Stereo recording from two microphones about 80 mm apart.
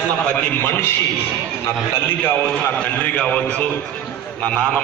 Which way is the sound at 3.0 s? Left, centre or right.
Centre.